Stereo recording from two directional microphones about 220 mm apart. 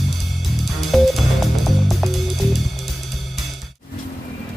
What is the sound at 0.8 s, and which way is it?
Music, centre (ahead or behind).